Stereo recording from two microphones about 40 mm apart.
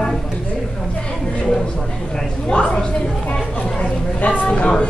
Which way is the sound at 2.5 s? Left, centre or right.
Left.